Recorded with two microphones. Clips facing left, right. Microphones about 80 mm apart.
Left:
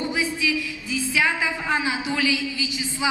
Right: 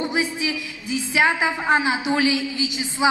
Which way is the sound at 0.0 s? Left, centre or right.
Right.